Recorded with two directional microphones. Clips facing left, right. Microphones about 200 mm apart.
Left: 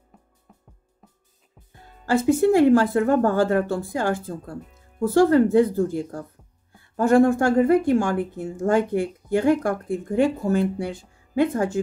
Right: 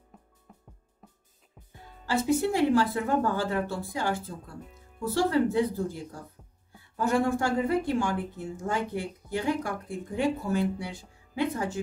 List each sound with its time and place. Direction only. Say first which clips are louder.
0.1 s music: even; centre (ahead or behind)
2.0 s a woman's voice: left 8 dB; 50° left (ahead or behind)